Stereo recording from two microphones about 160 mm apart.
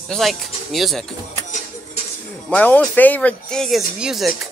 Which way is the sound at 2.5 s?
10° left (ahead or behind).